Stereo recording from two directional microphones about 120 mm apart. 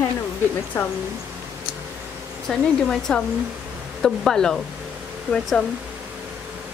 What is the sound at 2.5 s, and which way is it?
Speech, 5° left (ahead or behind).